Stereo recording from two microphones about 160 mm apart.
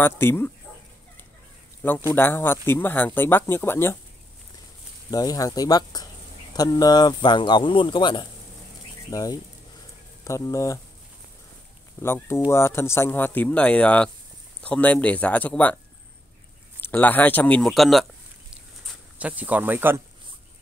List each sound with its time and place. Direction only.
0.0 s speech: 15° left (ahead or behind)
1.8 s speech: 10° left (ahead or behind)
5.1 s speech: 25° left (ahead or behind)
12.0 s speech: 15° left (ahead or behind)
16.8 s speech: 10° left (ahead or behind)
18.5 s a sound: 5° right (ahead or behind)